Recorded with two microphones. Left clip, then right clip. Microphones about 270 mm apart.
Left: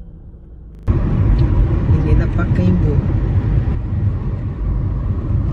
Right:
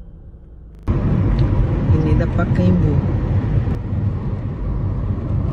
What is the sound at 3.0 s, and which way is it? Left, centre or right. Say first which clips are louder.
Vehicle: even; right.